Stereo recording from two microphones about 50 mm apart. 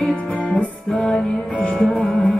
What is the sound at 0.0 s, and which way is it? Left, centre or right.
Music, left.